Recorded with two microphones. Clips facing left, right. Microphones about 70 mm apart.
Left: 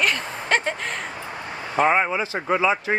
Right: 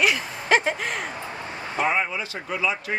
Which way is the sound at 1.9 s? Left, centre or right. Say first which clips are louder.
Left 5 dB; left.